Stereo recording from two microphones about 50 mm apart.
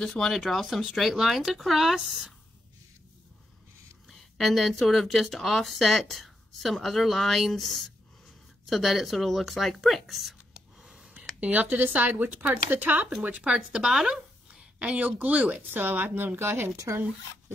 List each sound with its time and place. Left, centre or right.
0.0 s speech: centre
0.3 s speech: centre
4.1 s speech: centre
10.8 s a sound: centre
11.1 s a sound: right
11.8 s speech: right
13.5 s speech: centre
14.5 s a sound: right
15.0 s speech: right
15.8 s speech: right